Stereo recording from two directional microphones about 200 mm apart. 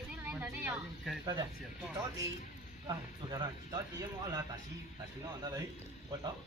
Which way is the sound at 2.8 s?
20° right (ahead or behind).